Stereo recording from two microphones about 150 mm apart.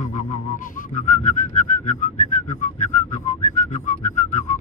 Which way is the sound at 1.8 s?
55° left (ahead or behind).